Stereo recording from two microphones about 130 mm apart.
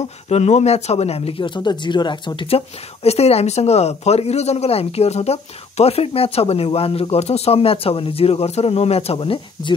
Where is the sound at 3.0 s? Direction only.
55° left (ahead or behind).